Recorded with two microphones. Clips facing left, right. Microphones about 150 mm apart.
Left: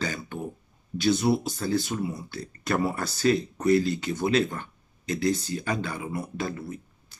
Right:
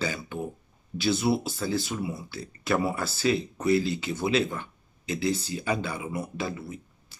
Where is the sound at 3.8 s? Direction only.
50° left (ahead or behind).